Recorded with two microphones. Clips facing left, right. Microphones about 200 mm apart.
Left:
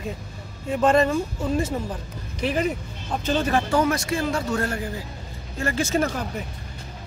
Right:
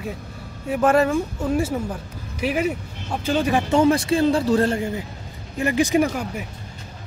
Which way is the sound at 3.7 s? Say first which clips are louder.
Right 9 dB; 30° right (ahead or behind).